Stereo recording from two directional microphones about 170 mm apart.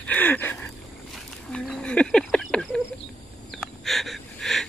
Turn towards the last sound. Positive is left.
turn(degrees=0)  # may be behind; listen again after turning